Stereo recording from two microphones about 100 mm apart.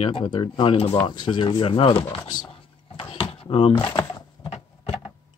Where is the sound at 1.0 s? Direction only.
50° left (ahead or behind); by 2.0 s 65° left (ahead or behind).